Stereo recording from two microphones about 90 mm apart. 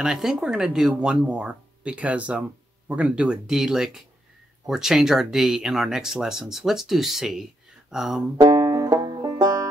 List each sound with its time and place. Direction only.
0.0 s speech: 5° right (ahead or behind)
8.4 s banjo: 45° right (ahead or behind)